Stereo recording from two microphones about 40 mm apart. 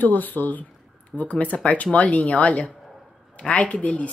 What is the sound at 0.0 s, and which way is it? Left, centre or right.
Speech, left.